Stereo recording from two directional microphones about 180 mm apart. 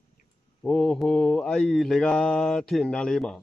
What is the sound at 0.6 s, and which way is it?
Speech, 5° left (ahead or behind).